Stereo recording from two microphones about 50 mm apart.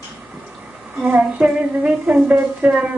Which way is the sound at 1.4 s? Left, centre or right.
Centre.